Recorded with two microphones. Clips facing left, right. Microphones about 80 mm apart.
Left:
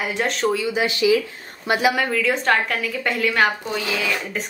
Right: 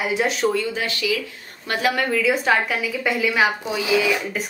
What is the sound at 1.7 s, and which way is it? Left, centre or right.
A woman's voice, centre.